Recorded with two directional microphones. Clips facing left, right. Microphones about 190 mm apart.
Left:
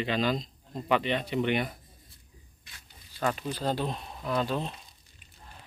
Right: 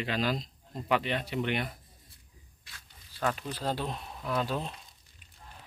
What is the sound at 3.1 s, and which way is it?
Speech, 5° left (ahead or behind).